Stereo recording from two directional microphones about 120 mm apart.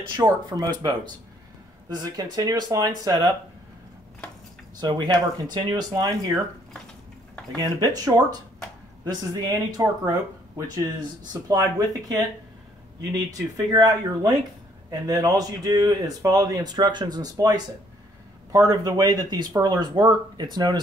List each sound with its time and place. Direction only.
0.1 s speech: 40° right (ahead or behind)
4.7 s speech: 35° right (ahead or behind)
7.6 s speech: 30° right (ahead or behind)
11.4 s speech: 30° right (ahead or behind)